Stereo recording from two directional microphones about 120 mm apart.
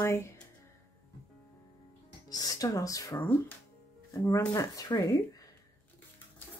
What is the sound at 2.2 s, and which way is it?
Speech, 30° left (ahead or behind).